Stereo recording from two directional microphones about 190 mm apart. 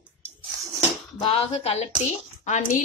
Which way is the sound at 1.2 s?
30° left (ahead or behind).